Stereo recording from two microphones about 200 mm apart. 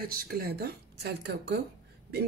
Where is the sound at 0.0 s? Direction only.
45° right (ahead or behind).